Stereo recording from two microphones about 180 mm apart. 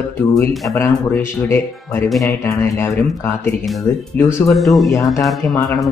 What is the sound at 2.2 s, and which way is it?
Speech, 15° left (ahead or behind).